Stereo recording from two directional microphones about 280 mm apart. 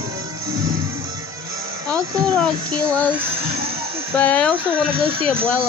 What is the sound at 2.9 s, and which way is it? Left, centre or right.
Speech, centre.